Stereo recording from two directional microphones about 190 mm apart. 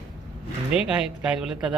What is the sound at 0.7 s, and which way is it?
A woman's voice, 5° right (ahead or behind).